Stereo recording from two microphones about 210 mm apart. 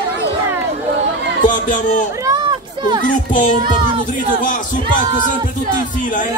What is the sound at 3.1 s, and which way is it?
Music, 40° left (ahead or behind).